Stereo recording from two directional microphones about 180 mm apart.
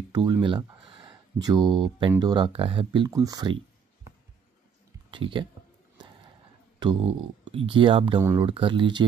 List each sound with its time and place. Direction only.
0.1 s speech: 25° right (ahead or behind)
5.1 s speech: 25° right (ahead or behind)
6.8 s speech: 25° right (ahead or behind)
8.2 s speech: 15° right (ahead or behind)
8.5 s speech: 30° right (ahead or behind)